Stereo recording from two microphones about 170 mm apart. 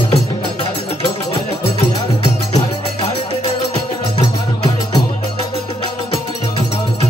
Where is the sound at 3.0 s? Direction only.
35° left (ahead or behind).